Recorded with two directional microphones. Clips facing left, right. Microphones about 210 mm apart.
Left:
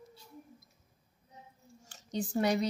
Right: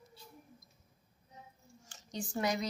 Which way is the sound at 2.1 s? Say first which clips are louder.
Left 5 dB; 35° left (ahead or behind).